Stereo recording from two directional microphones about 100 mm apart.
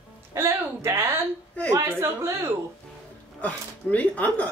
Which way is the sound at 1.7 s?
30° right (ahead or behind).